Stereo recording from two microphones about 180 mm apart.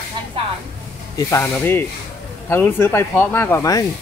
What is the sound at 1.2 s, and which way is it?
Speech, 15° left (ahead or behind).